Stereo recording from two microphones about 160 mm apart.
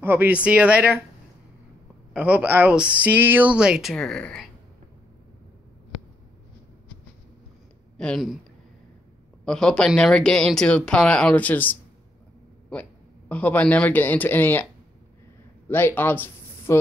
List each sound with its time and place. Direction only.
0.0 s speech: 10° right (ahead or behind)
2.1 s speech: 10° right (ahead or behind)
8.0 s speech: 5° left (ahead or behind)
9.4 s speech: 5° left (ahead or behind)
13.3 s speech: 10° left (ahead or behind)
15.7 s speech: 15° left (ahead or behind)